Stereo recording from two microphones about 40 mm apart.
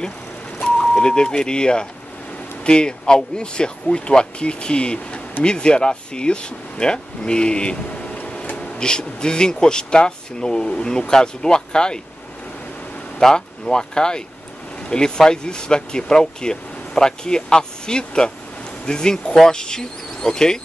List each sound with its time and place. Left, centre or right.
0.7 s speech: left
13.2 s speech: centre